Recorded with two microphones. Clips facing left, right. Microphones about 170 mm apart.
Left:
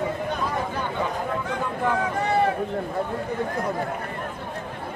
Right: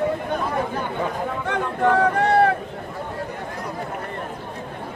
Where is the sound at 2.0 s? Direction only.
65° right (ahead or behind).